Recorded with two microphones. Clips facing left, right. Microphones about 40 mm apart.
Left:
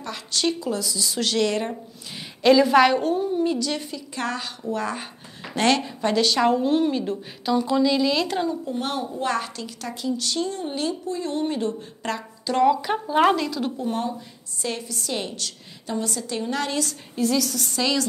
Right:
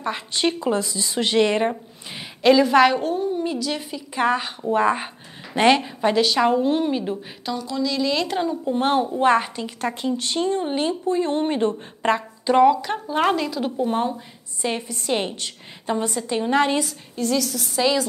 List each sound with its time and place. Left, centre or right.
0.0 s a woman's voice: right
2.4 s a woman's voice: centre
7.5 s speech: centre
8.0 s a woman's voice: centre
8.6 s a woman's voice: right
12.6 s a woman's voice: centre
13.7 s a woman's voice: right
17.1 s a woman's voice: centre